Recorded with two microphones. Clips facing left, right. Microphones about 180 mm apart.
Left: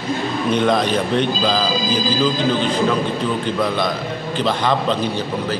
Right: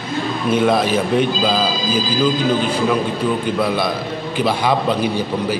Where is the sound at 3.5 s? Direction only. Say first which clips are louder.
Right 1 dB; 10° right (ahead or behind).